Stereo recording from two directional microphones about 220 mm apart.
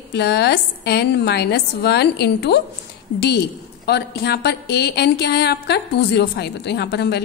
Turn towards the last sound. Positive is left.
turn(degrees=50)  # may be behind; listen again after turning